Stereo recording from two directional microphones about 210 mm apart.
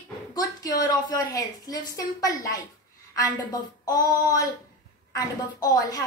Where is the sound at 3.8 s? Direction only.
15° left (ahead or behind).